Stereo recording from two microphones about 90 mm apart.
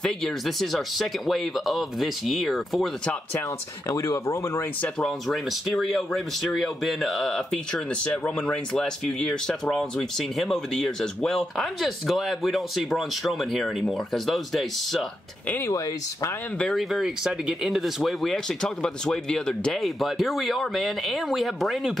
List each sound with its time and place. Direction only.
0.0 s speech: 5° left (ahead or behind)
3.9 s speech: 35° left (ahead or behind)
4.8 s speech: 5° left (ahead or behind)
15.6 s speech: 35° left (ahead or behind)
16.5 s speech: 5° left (ahead or behind)